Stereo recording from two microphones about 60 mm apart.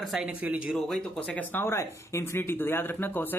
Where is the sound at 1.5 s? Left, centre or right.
Left.